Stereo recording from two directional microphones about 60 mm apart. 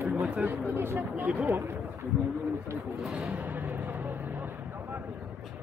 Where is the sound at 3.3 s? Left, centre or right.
Right.